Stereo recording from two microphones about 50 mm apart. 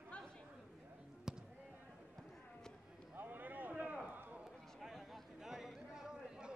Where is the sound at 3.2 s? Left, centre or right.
Right.